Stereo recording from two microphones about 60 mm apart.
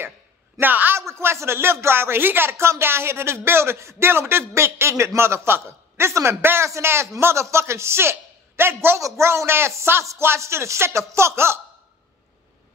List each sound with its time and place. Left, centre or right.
0.6 s a man's voice: right
0.9 s speech: right
2.5 s speech: right
9.0 s speech: right